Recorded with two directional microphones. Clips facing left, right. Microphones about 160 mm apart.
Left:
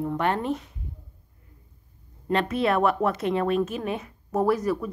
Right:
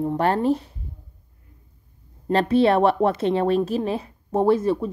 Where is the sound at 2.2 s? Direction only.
30° right (ahead or behind).